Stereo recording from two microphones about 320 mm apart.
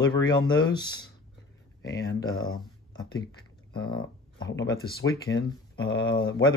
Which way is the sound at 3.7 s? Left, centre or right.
Left.